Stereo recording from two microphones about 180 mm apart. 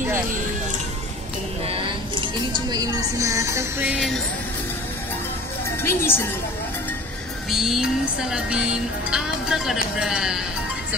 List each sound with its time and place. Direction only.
1.7 s speech: 30° right (ahead or behind)
5.9 s a woman's voice: 15° left (ahead or behind)
7.5 s music: centre (ahead or behind)
9.1 s speech: 5° right (ahead or behind)